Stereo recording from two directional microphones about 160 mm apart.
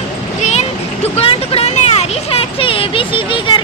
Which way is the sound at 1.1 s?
35° left (ahead or behind).